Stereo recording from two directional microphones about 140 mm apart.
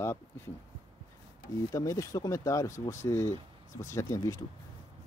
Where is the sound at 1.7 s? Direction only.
20° left (ahead or behind).